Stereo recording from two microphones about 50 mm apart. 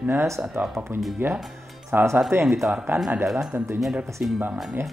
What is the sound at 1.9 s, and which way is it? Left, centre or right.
Speech, right.